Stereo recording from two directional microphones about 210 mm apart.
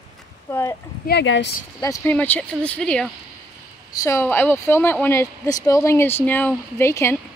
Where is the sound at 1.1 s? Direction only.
55° left (ahead or behind).